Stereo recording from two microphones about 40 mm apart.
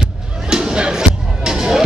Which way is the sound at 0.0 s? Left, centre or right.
Centre.